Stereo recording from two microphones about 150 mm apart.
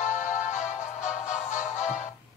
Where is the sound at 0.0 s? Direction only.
55° left (ahead or behind).